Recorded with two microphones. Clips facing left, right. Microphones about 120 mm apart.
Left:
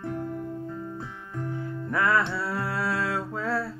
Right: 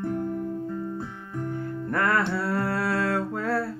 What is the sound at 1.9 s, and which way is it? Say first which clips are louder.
Music: even; 60° right (ahead or behind).